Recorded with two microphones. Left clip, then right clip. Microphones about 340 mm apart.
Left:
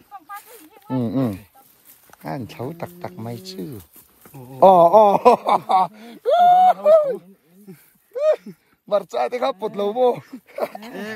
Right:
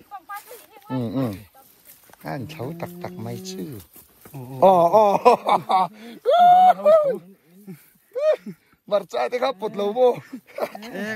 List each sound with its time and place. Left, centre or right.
0.1 s a sound: right
0.8 s speech: left
3.6 s speech: centre
4.6 s speech: left
8.1 s a sound: centre
9.1 s speech: left